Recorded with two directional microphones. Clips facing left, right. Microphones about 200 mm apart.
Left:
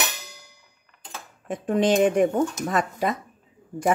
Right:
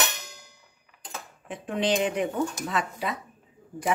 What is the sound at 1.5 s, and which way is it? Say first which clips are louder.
Speech: left 5 dB; 45° left (ahead or behind).